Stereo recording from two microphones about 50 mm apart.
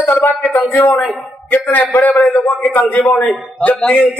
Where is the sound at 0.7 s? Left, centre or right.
Left.